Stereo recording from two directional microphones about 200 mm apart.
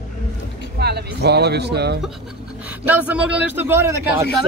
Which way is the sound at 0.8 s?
55° right (ahead or behind).